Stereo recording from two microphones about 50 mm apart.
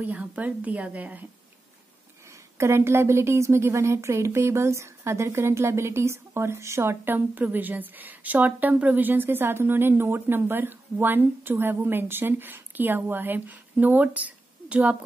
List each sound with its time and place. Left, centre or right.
0.0 s a woman's voice: right
2.2 s a woman's voice: right
7.1 s a woman's voice: right